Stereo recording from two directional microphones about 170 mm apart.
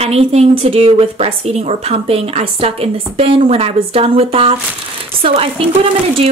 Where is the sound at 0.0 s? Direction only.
35° right (ahead or behind).